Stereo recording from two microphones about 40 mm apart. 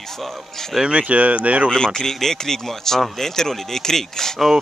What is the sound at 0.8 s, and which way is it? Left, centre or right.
Speech, right.